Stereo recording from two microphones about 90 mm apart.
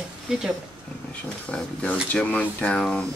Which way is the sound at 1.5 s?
15° left (ahead or behind).